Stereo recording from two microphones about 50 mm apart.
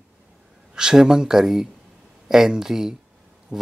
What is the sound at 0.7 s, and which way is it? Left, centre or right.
Speech, centre.